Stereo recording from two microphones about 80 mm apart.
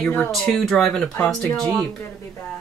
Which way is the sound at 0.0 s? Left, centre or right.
Centre.